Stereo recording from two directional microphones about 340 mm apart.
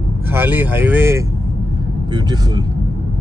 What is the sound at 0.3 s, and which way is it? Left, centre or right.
Speech, centre.